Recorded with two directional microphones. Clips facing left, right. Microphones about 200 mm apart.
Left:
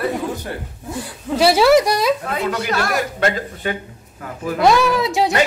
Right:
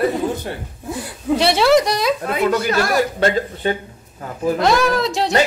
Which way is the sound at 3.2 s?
30° right (ahead or behind).